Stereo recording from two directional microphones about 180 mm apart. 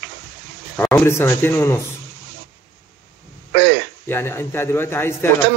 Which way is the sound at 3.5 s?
70° right (ahead or behind).